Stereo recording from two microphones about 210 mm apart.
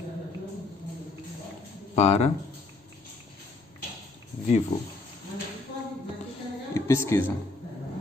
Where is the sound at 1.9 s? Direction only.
30° left (ahead or behind).